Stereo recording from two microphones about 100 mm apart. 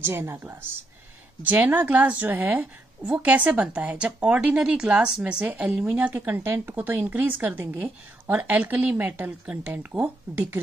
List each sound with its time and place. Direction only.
0.0 s a woman's voice: 25° right (ahead or behind)